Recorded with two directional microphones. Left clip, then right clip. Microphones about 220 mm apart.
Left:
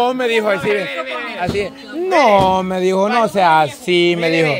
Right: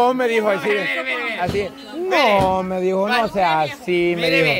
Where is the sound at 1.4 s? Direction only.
15° left (ahead or behind).